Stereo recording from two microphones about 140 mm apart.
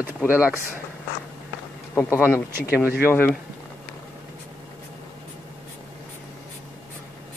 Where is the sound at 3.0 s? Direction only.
15° left (ahead or behind).